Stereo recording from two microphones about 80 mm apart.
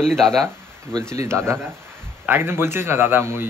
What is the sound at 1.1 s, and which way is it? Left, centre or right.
A man's voice, right.